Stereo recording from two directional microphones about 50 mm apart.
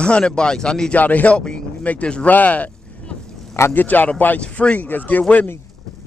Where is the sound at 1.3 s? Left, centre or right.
Centre.